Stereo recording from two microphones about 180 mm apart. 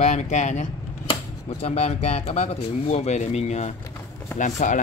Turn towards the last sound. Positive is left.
turn(degrees=45)  # may be behind; listen again after turning